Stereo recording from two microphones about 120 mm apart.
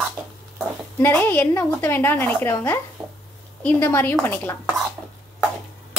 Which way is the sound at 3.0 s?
40° right (ahead or behind).